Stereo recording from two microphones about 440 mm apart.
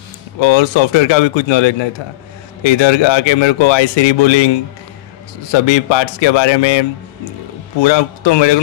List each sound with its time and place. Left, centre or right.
0.4 s speech: left
2.6 s speech: left
5.5 s speech: left
7.8 s speech: left